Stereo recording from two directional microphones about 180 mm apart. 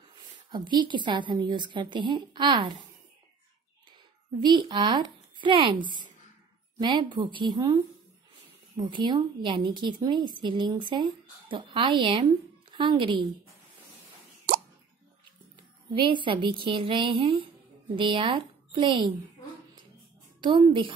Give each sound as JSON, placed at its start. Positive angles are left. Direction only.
{"t": 0.5, "sound": "speech", "side_deg": -25}
{"t": 4.4, "sound": "speech", "side_deg": -25}
{"t": 6.8, "sound": "speech", "side_deg": -25}
{"t": 16.0, "sound": "a woman's voice", "side_deg": -25}
{"t": 20.3, "sound": "a woman's voice", "side_deg": -25}